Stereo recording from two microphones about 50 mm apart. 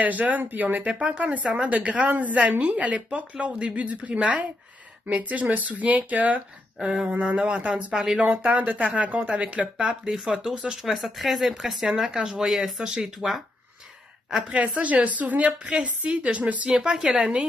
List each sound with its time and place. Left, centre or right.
0.0 s speech: right
0.9 s speech: right
6.8 s speech: centre
7.1 s speech: right
8.3 s speech: right
10.0 s speech: centre
14.5 s speech: right
16.8 s speech: centre